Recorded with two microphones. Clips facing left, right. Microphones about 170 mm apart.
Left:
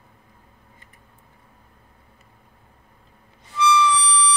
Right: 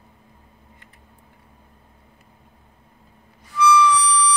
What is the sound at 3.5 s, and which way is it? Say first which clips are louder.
Music: right 3 dB; 25° left (ahead or behind).